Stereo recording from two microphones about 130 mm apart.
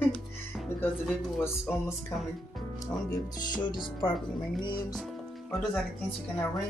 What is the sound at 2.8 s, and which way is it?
Speech, 30° left (ahead or behind).